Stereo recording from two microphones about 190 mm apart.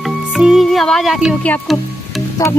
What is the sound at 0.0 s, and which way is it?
Speech, centre (ahead or behind).